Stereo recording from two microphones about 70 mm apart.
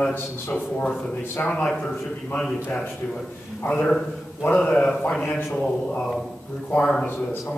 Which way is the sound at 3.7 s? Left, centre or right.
Centre.